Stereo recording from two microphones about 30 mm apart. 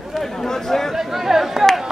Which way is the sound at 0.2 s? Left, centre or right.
Centre.